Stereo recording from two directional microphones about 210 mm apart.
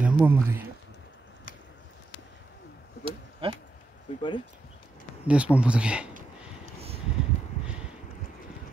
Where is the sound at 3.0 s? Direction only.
25° right (ahead or behind).